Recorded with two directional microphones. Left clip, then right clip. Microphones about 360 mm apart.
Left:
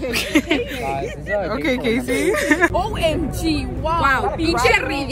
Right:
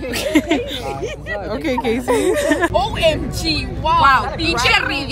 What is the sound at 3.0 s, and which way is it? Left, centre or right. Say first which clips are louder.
Speech: right 3 dB; centre.